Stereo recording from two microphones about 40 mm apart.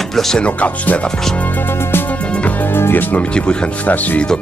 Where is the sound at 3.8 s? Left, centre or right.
Left.